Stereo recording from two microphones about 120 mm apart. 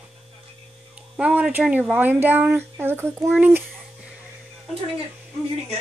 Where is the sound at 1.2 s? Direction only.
10° right (ahead or behind).